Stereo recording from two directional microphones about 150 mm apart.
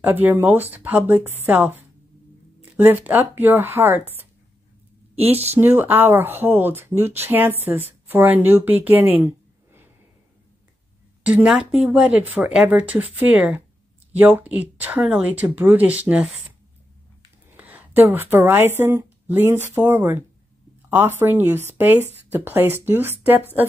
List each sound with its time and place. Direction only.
0.0 s speech: 10° right (ahead or behind)
5.2 s a woman's voice: 45° right (ahead or behind)
5.6 s speech: 15° right (ahead or behind)
11.2 s speech: 10° right (ahead or behind)
17.6 s speech: 10° right (ahead or behind)